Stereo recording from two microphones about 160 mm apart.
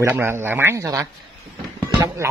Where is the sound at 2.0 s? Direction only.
20° right (ahead or behind).